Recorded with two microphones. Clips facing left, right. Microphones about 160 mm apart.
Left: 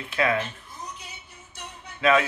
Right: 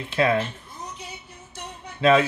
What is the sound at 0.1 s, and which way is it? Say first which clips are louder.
Speech: right 3 dB; 30° right (ahead or behind).